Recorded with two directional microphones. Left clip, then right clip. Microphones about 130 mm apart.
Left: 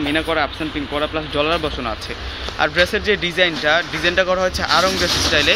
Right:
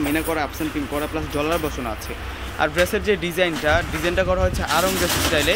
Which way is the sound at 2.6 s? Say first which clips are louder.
Left 3 dB; 20° right (ahead or behind).